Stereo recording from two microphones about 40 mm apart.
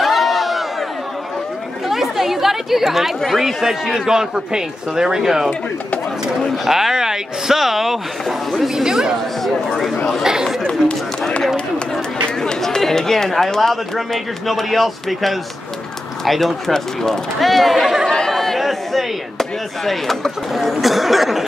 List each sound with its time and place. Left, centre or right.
0.0 s a sound: centre
1.9 s chatter: centre
3.6 s speech: centre
6.6 s speech: centre
9.4 s speech: centre
10.2 s speech: centre
10.7 s speech: left
12.4 s speech: centre
17.4 s speech: centre